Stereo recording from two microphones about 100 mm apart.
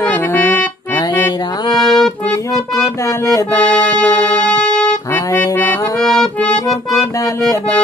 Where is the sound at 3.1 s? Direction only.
30° left (ahead or behind).